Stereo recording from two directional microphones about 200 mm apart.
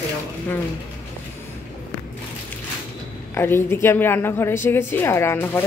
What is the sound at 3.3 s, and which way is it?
A woman's voice, 10° left (ahead or behind).